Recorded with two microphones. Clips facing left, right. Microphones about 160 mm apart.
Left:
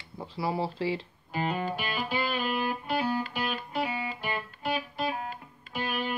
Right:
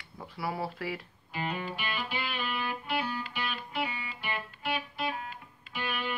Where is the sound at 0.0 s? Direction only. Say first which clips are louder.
Left 4 dB; 25° left (ahead or behind).